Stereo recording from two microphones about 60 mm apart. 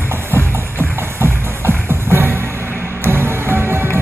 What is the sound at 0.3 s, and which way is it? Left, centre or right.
Music, right.